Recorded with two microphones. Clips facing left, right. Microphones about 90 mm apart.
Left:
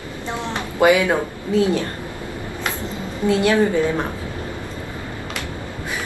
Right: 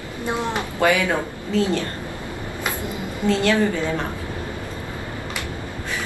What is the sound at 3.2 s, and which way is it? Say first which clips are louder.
Speech: left 2 dB; 15° left (ahead or behind).